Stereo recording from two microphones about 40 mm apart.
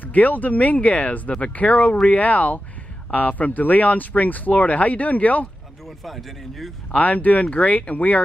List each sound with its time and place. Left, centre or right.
0.0 s speech: left
5.9 s speech: centre
6.9 s speech: left